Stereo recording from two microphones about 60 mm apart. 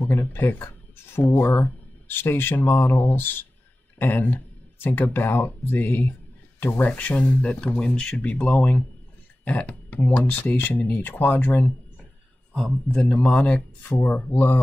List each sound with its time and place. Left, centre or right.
0.2 s speech: left; by 8.2 s centre
8.2 s speech: left
12.5 s speech: centre
13.1 s speech: left